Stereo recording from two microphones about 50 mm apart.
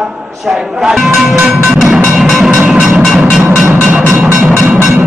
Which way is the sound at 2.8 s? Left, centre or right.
Centre.